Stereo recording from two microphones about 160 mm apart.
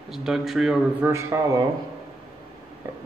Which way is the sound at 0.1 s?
Centre (ahead or behind).